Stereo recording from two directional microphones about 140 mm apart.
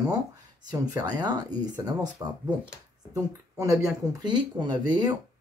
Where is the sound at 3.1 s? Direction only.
20° right (ahead or behind).